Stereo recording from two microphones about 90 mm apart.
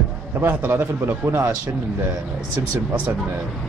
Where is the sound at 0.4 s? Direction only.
25° right (ahead or behind).